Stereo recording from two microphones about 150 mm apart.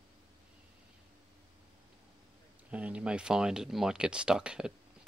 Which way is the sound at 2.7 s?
10° right (ahead or behind).